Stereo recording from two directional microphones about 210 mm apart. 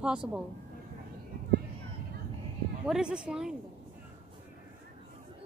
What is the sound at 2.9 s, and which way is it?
Speech, 5° right (ahead or behind).